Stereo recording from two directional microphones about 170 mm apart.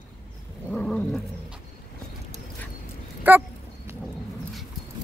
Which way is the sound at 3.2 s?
10° right (ahead or behind).